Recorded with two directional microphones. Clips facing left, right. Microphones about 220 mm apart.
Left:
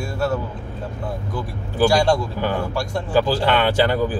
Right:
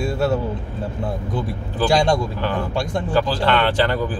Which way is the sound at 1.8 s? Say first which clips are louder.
Even; 20° right (ahead or behind).